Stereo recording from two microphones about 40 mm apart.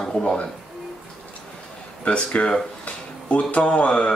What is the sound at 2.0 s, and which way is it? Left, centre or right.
Speech, left.